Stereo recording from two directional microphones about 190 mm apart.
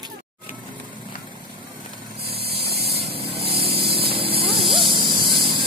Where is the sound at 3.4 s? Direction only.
55° right (ahead or behind).